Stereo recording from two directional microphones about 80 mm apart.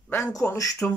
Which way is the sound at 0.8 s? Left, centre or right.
Centre.